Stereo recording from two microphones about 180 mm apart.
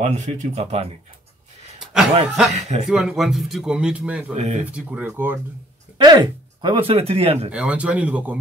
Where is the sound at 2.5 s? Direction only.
40° right (ahead or behind).